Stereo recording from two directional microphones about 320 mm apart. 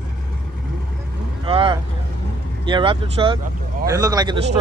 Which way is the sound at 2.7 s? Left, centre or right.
Centre.